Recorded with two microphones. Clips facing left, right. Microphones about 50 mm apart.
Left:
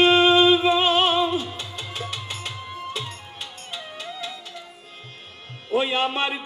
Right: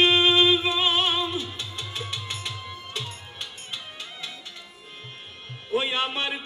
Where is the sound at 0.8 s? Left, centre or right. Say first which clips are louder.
Left 5 dB; left.